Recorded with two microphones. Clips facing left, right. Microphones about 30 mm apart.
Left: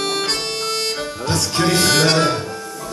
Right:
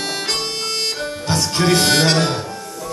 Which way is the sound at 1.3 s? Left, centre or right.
Right.